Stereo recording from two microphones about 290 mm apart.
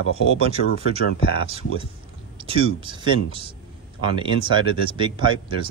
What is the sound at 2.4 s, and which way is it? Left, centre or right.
Speech, centre.